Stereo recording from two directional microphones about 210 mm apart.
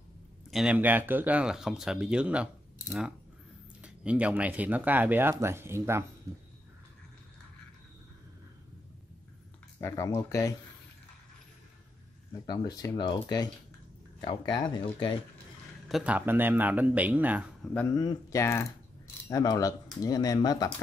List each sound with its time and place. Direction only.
0.5 s speech: 5° right (ahead or behind)
9.8 s speech: 15° left (ahead or behind)
12.4 s speech: 20° left (ahead or behind)
15.9 s speech: 5° right (ahead or behind)
17.7 s speech: 15° left (ahead or behind)